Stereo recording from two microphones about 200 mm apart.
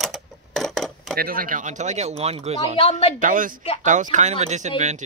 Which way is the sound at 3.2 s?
40° right (ahead or behind).